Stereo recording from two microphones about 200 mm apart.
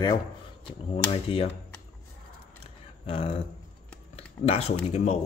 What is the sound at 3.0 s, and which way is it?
Speech, 30° left (ahead or behind).